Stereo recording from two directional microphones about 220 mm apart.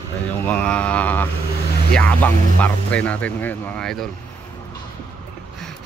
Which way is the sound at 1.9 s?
5° left (ahead or behind).